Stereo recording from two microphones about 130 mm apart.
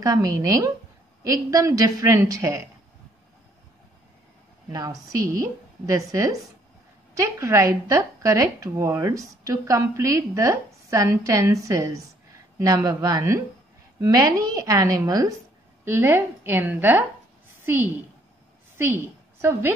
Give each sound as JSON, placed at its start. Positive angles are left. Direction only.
{"t": 0.0, "sound": "speech", "side_deg": -25}
{"t": 4.7, "sound": "a woman's voice", "side_deg": -25}
{"t": 18.8, "sound": "a woman's voice", "side_deg": -20}